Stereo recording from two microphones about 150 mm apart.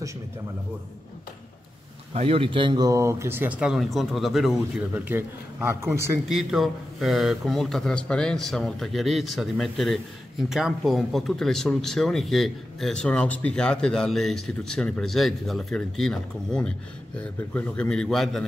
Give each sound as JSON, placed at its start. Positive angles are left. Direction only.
{"t": 2.1, "sound": "speech", "side_deg": -40}
{"t": 2.9, "sound": "speech", "side_deg": -20}
{"t": 4.7, "sound": "speech", "side_deg": -10}
{"t": 6.2, "sound": "speech", "side_deg": 0}